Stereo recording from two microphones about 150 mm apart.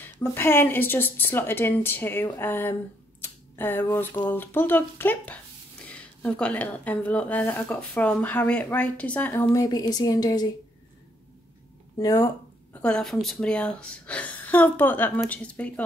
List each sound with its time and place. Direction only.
0.0 s speech: 15° left (ahead or behind)
12.0 s speech: 20° left (ahead or behind)
12.8 s speech: 5° left (ahead or behind)